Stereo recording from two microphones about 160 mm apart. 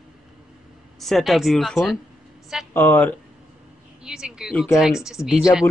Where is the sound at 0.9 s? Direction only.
Centre (ahead or behind).